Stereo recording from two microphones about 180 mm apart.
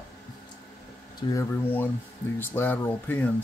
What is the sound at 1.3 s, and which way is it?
Speech, 10° left (ahead or behind).